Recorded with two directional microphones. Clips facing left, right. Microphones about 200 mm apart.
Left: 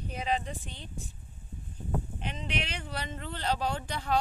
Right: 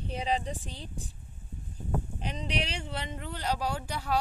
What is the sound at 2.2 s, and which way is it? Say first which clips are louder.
Speech: right 2 dB; 40° right (ahead or behind).